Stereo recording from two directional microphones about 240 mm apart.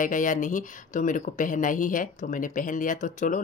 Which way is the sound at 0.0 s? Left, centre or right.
Left.